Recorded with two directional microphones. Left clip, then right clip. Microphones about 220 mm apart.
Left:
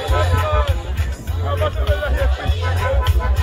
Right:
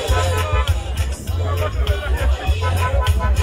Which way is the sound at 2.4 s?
50° right (ahead or behind).